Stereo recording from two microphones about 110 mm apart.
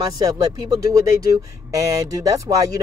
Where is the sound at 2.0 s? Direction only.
30° right (ahead or behind).